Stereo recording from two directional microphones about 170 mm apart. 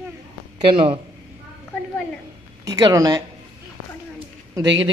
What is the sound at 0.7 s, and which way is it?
Speech, 30° right (ahead or behind).